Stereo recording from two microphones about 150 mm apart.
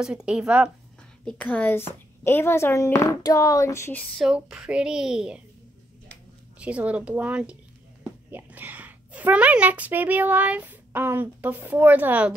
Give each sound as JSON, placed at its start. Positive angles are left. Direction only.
{"t": 0.0, "sound": "speech", "side_deg": -5}
{"t": 1.2, "sound": "speech", "side_deg": 10}
{"t": 4.0, "sound": "speech", "side_deg": 0}
{"t": 6.6, "sound": "a woman's voice", "side_deg": -10}